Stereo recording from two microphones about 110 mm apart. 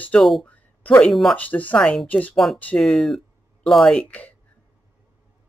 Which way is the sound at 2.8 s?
Centre (ahead or behind).